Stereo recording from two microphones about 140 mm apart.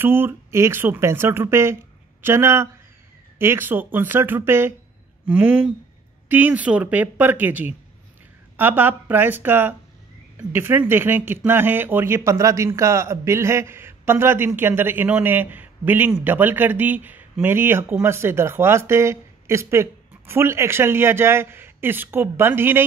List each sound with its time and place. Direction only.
0.0 s speech: 15° right (ahead or behind)